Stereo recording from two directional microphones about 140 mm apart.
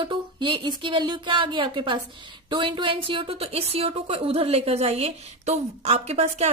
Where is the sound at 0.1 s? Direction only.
35° right (ahead or behind).